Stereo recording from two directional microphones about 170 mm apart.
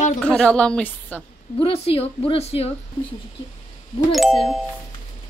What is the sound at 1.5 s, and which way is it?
A woman's voice, 35° left (ahead or behind).